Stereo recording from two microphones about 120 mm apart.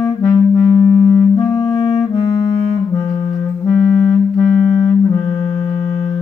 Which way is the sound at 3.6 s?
10° left (ahead or behind).